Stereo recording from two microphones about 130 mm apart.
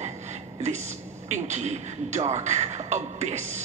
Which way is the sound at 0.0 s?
60° right (ahead or behind).